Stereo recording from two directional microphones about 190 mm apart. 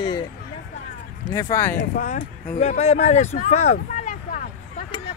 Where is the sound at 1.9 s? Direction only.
45° left (ahead or behind).